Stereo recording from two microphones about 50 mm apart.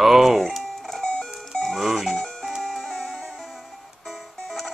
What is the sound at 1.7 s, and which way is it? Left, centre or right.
Livestock, centre.